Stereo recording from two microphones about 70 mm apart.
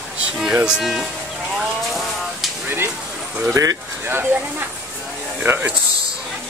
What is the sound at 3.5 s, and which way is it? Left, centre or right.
Speech, right.